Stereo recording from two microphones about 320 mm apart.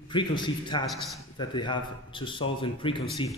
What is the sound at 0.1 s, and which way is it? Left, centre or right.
Speech, centre.